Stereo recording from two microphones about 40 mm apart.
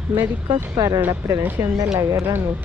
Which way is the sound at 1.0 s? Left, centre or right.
Right.